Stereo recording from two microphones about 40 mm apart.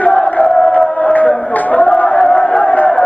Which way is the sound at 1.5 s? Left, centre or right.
Left.